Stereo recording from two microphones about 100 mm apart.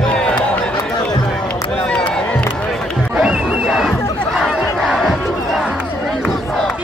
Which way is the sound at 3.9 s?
30° left (ahead or behind).